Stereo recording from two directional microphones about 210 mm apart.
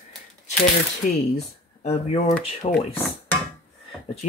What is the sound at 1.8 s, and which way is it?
Speech, 30° left (ahead or behind).